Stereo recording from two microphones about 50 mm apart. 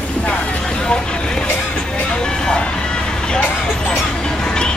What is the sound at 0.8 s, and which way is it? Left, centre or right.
Vehicle, centre.